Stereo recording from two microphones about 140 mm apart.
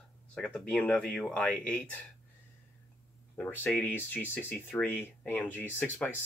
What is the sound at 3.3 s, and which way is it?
Speech, 10° left (ahead or behind).